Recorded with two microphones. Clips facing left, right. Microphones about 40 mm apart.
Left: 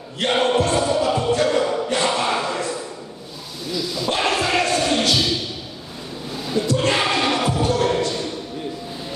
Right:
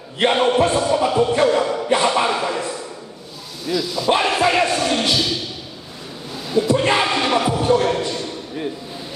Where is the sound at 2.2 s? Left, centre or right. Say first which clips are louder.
Right 1 dB; centre.